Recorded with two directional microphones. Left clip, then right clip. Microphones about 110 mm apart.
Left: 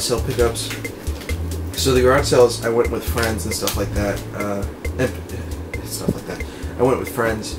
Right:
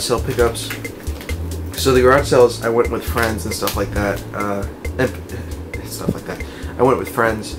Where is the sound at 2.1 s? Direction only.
15° right (ahead or behind).